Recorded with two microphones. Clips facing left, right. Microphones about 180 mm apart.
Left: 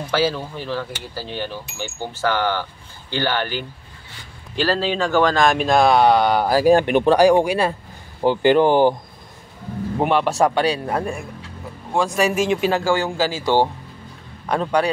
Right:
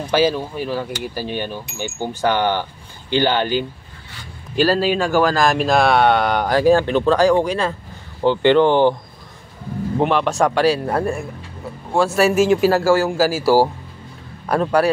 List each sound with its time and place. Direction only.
0.0 s speech: 15° right (ahead or behind); by 8.9 s 10° left (ahead or behind)
9.9 s a man's voice: centre (ahead or behind)